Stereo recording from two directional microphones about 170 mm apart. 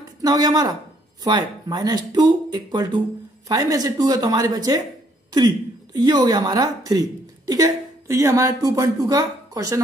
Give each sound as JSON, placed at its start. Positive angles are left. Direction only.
{"t": 0.2, "sound": "speech", "side_deg": -20}
{"t": 5.9, "sound": "a woman's voice", "side_deg": -25}